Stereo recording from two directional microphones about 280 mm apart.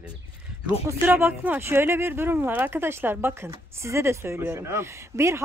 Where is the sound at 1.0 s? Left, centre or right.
Centre.